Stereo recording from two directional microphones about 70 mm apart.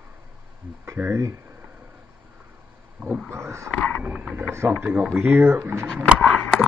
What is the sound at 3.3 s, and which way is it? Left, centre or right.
Speech, right.